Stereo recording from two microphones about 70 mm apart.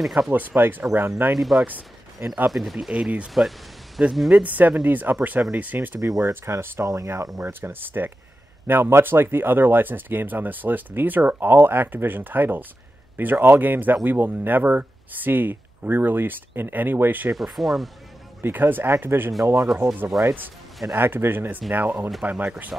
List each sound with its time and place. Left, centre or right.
0.0 s speech: centre
0.3 s speech: right
1.3 s speech: centre
2.2 s speech: right
2.5 s speech: centre
3.3 s a sound: centre
4.3 s speech: right
5.9 s speech: right
7.6 s speech: right
17.3 s speech: centre
18.4 s speech: right
20.1 s speech: centre
20.9 s speech: right